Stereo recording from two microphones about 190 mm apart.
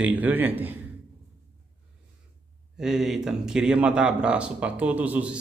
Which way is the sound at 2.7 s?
Centre (ahead or behind).